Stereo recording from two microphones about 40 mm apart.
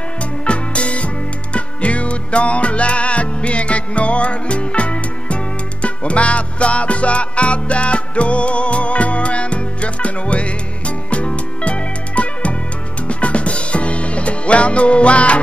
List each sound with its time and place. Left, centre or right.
0.5 s music: left